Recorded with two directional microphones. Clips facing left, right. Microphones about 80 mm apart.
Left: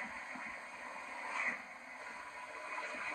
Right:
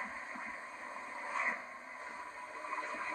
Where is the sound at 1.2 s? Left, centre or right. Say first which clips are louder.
Right 4 dB; right.